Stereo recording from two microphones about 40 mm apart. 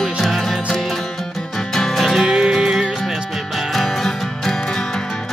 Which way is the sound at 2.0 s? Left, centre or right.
Centre.